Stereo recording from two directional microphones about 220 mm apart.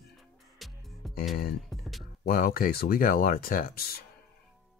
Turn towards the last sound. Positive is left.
turn(degrees=45)  # may be behind; listen again after turning